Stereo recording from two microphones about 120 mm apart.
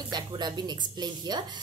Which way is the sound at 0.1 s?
35° right (ahead or behind).